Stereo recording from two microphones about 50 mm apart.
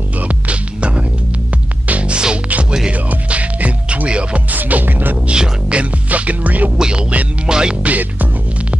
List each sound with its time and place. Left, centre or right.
0.2 s music: right
4.6 s music: right
5.3 s music: centre
6.0 s music: right
6.8 s music: centre
7.8 s music: right